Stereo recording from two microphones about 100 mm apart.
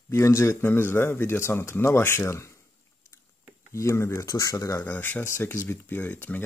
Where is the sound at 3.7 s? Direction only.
30° left (ahead or behind).